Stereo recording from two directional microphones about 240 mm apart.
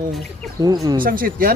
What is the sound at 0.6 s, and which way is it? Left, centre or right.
Speech, centre.